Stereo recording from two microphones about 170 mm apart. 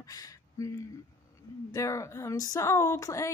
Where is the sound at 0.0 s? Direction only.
20° left (ahead or behind).